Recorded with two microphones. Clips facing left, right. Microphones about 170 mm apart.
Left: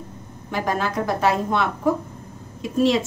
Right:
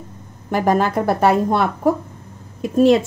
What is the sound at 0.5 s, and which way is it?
A woman's voice, 45° right (ahead or behind).